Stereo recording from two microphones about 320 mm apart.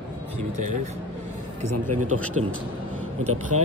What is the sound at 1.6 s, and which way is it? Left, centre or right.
A man's voice, right.